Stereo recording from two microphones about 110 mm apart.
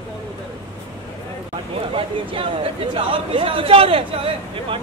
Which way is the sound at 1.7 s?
55° right (ahead or behind).